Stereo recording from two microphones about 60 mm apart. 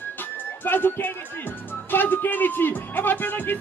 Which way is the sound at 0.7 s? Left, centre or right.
Left.